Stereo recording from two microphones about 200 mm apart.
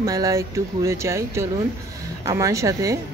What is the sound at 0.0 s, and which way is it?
A woman's voice, 15° right (ahead or behind).